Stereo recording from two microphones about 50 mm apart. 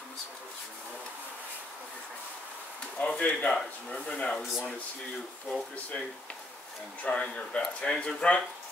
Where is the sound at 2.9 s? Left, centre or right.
Left.